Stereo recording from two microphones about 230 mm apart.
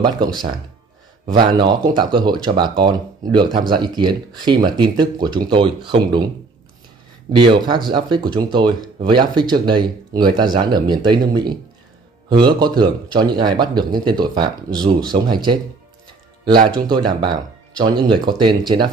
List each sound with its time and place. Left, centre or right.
0.0 s speech: centre
7.3 s speech: centre
16.6 s speech: centre